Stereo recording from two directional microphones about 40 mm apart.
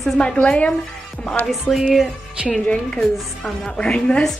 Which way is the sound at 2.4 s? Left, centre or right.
Right.